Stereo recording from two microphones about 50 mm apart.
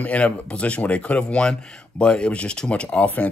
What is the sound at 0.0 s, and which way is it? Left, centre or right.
Speech, left.